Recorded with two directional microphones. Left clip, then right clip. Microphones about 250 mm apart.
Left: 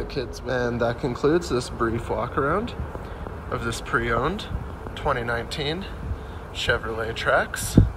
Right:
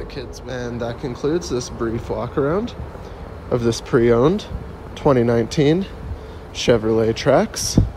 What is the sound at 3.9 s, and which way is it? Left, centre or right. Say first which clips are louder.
Speech: right 8 dB; right.